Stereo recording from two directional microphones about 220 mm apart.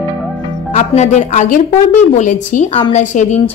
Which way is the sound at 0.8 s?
30° left (ahead or behind).